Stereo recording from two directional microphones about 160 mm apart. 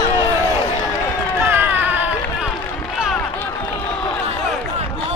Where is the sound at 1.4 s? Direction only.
15° right (ahead or behind).